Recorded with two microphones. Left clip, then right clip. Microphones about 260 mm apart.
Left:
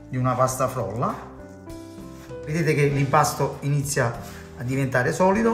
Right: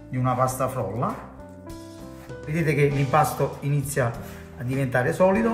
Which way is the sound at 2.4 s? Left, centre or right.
Centre.